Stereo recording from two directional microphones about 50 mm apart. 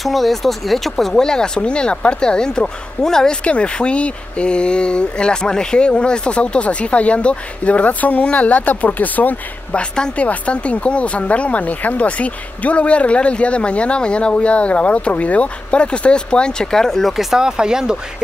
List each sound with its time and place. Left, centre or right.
0.0 s speech: centre
3.4 s speech: left
17.2 s speech: centre